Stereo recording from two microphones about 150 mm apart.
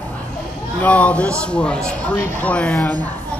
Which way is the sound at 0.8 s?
10° left (ahead or behind).